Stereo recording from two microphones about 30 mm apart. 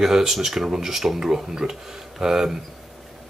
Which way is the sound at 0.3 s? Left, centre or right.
Centre.